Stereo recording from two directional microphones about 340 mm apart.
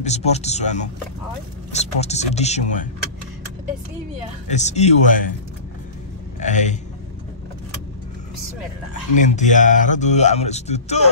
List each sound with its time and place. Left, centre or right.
0.0 s speech: centre
4.5 s speech: centre
6.4 s speech: left
9.2 s speech: left